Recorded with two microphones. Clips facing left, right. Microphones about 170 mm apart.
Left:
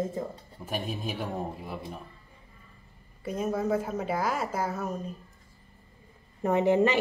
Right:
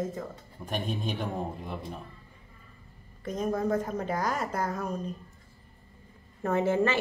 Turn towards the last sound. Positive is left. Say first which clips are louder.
# left 3 dB
turn(degrees=15)  # may be behind; listen again after turning